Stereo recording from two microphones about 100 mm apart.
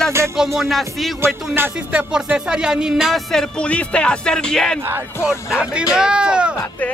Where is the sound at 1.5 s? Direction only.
20° right (ahead or behind).